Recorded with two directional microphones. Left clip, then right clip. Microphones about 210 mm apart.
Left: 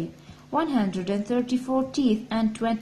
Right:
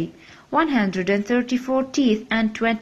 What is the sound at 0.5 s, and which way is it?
A woman's voice, 25° right (ahead or behind).